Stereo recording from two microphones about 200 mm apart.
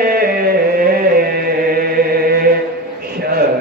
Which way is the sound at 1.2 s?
50° right (ahead or behind).